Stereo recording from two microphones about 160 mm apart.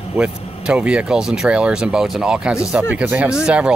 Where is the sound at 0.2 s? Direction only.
5° right (ahead or behind).